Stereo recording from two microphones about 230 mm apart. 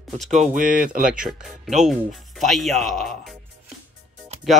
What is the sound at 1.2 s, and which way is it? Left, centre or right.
Speech, centre.